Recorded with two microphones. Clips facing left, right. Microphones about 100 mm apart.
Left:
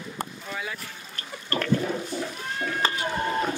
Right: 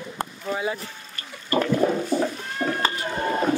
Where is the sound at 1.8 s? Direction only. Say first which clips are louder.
Right 8 dB; 50° right (ahead or behind).